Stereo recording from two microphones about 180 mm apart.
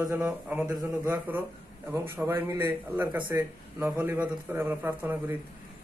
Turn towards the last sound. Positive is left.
turn(degrees=-10)  # may be behind; listen again after turning